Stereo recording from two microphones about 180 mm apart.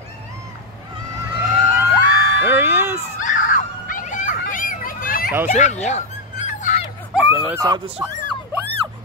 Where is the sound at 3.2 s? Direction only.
45° left (ahead or behind).